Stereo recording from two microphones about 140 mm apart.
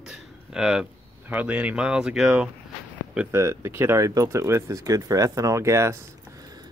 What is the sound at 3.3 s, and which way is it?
Speech, 20° right (ahead or behind).